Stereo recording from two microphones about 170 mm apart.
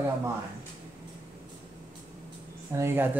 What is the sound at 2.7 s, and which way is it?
Speech, 15° right (ahead or behind).